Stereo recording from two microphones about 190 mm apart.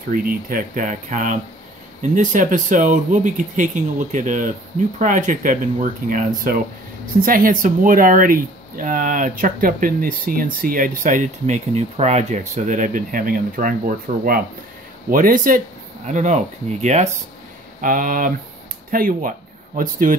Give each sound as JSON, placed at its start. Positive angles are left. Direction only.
{"t": 0.1, "sound": "speech", "side_deg": -50}